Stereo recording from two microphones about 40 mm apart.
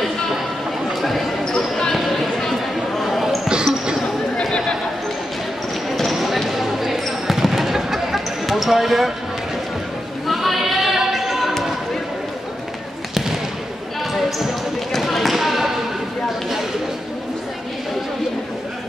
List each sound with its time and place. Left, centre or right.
1.4 s basketball bounce: centre
2.0 s basketball bounce: centre
3.4 s basketball bounce: right
4.0 s a sound: centre
5.9 s basketball bounce: centre
10.2 s a sound: centre
14.9 s basketball bounce: centre